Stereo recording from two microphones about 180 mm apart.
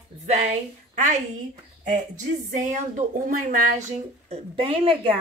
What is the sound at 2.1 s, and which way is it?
A woman's voice, 45° right (ahead or behind).